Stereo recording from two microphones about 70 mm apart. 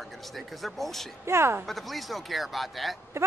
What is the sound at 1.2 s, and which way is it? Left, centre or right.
Speech, right.